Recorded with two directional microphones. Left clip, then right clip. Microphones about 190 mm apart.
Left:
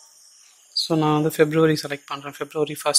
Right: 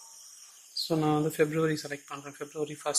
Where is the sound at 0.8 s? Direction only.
40° left (ahead or behind).